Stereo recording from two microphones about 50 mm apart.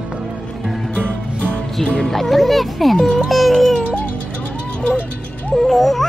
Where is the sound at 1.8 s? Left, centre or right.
Centre.